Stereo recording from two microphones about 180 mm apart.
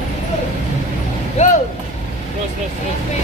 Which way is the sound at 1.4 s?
40° left (ahead or behind).